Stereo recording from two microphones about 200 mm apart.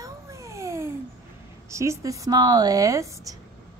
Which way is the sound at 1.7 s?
15° right (ahead or behind).